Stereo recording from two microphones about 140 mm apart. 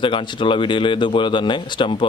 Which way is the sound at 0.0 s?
35° left (ahead or behind).